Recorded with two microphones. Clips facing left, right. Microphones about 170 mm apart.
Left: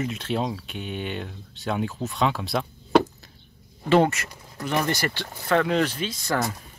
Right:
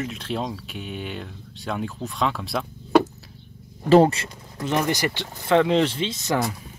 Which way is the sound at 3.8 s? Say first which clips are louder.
Right 4 dB; 35° right (ahead or behind).